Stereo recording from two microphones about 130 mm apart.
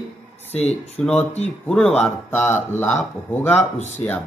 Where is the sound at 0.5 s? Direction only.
55° left (ahead or behind).